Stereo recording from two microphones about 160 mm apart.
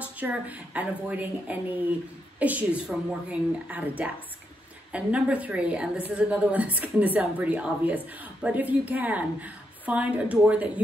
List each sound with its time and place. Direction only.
0.0 s a woman's voice: 10° right (ahead or behind)